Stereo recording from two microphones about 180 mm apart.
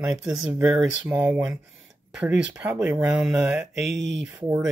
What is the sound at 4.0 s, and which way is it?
Speech, 80° right.